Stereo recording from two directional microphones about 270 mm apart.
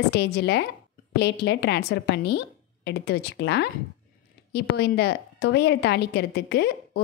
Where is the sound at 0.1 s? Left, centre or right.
Left.